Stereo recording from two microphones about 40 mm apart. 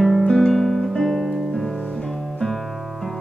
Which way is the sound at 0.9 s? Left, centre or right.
Centre.